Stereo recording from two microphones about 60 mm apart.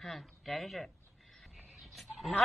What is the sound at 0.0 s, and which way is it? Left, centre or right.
Speech, centre.